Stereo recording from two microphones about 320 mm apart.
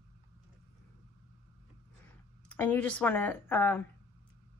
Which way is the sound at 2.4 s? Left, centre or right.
Centre.